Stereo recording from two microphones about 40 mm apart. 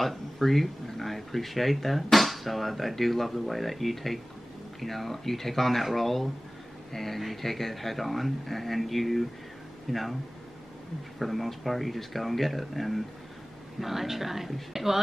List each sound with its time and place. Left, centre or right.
0.0 s speech: centre
11.1 s speech: centre